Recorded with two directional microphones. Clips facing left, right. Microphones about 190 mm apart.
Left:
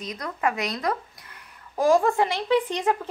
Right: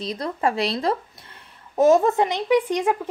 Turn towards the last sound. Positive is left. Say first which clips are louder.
# right 3 dB
turn(degrees=-10)  # may be behind; listen again after turning